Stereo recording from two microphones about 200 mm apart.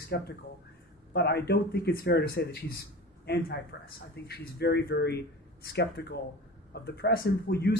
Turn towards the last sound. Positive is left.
turn(degrees=55)  # may be behind; listen again after turning